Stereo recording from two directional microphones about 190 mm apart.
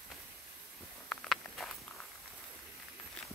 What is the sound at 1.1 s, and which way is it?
Walk, 5° left (ahead or behind).